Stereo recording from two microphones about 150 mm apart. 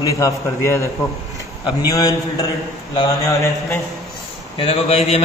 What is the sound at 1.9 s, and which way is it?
Speech, 25° left (ahead or behind).